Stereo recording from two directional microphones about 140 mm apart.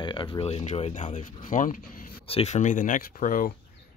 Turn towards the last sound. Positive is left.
turn(degrees=75)  # may be behind; listen again after turning